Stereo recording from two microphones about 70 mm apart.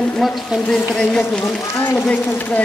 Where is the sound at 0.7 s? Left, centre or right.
Centre.